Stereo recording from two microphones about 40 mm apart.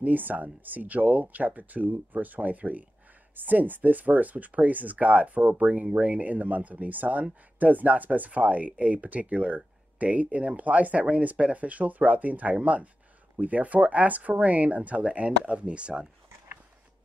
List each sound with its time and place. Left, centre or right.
0.0 s speech: right
5.6 s speech: right